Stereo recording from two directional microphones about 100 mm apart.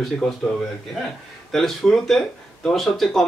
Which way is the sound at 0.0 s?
Centre (ahead or behind).